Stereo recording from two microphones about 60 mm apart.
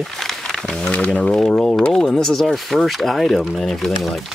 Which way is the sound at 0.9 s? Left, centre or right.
Centre.